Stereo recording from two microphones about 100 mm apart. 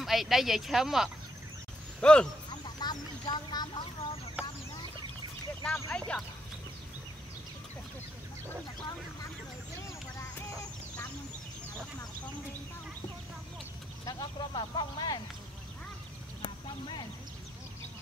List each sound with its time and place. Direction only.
0.0 s speech: centre (ahead or behind)
2.0 s speech: 10° left (ahead or behind)
2.5 s vehicle: 45° left (ahead or behind)
4.4 s chicken: 15° right (ahead or behind)
5.6 s a sound: 25° left (ahead or behind)
5.9 s speech: 10° left (ahead or behind)
14.0 s speech: 50° left (ahead or behind)
16.4 s clip-clop: 50° left (ahead or behind)